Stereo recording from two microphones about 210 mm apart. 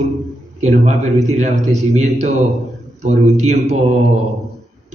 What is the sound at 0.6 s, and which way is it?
A man's voice, 35° right (ahead or behind).